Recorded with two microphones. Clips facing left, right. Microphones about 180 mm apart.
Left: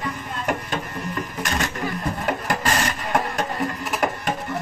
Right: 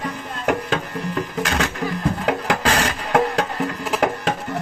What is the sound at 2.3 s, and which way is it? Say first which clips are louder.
Music: right 3 dB; 90° right.